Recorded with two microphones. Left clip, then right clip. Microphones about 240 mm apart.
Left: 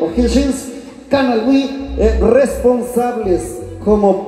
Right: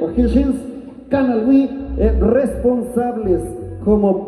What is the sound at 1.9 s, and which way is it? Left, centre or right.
Speech, left.